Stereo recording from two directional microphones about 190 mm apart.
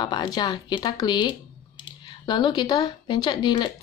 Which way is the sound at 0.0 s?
20° left (ahead or behind).